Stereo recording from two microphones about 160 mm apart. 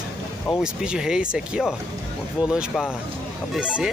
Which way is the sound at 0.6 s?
5° right (ahead or behind).